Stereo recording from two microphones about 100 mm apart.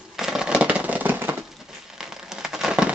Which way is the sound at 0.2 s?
5° right (ahead or behind).